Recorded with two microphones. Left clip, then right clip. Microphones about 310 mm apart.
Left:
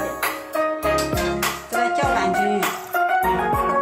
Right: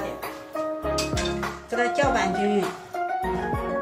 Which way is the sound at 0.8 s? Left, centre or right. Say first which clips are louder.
Left 6 dB; left.